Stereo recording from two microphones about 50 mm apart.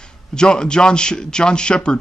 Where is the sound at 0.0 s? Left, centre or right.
Centre.